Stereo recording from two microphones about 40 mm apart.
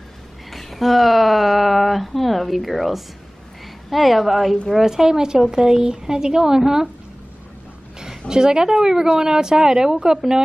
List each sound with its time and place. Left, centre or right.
0.5 s speech: centre
8.3 s speech: centre
9.9 s a woman's voice: right